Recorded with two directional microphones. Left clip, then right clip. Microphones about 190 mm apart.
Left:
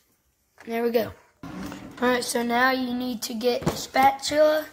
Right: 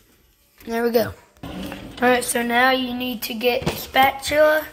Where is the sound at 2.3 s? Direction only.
5° left (ahead or behind).